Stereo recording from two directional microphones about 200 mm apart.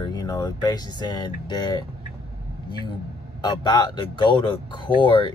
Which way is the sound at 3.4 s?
20° left (ahead or behind).